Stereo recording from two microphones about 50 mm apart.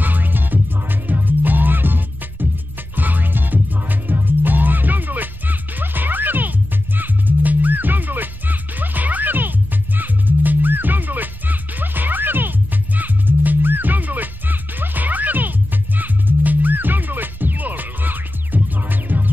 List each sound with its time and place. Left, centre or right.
0.0 s music: right